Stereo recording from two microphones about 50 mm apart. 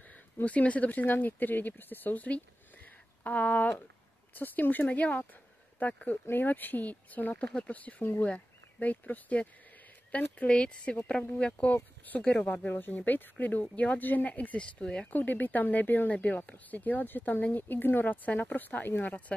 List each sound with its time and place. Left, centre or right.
0.1 s speech: left
12.6 s speech: left
14.6 s speech: centre
15.0 s speech: left